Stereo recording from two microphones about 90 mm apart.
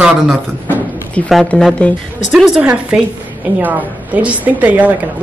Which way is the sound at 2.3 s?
5° right (ahead or behind).